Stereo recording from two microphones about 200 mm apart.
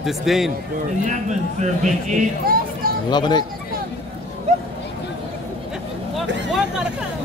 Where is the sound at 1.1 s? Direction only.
35° right (ahead or behind).